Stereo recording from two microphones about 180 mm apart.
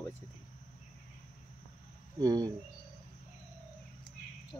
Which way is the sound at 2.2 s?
20° right (ahead or behind).